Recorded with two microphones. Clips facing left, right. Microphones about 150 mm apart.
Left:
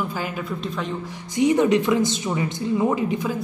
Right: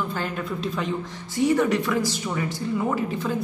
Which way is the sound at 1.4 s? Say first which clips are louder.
Left 3 dB; 20° left (ahead or behind).